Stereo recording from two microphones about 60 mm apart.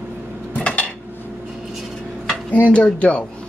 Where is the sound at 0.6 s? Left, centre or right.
Left.